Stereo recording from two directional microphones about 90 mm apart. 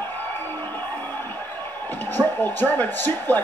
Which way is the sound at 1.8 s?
20° left (ahead or behind).